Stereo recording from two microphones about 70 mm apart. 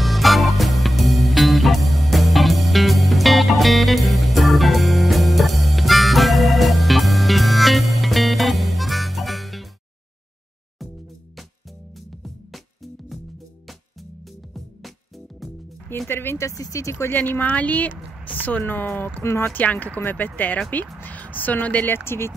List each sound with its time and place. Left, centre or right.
0.0 s music: centre
12.1 s music: centre
14.5 s music: centre
16.1 s a sound: left
16.4 s speech: left
17.1 s speech: left
19.2 s speech: left
19.5 s speech: left
21.0 s a sound: left
21.9 s speech: left